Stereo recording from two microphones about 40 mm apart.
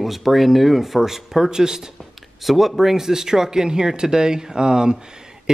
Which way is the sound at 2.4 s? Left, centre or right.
Centre.